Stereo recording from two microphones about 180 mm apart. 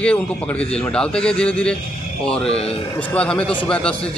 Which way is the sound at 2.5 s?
35° left (ahead or behind).